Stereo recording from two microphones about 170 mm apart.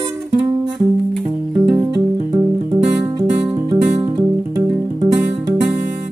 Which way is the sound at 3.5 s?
30° right (ahead or behind).